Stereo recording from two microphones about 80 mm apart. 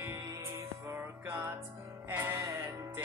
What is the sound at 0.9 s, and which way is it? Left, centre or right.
Music, right.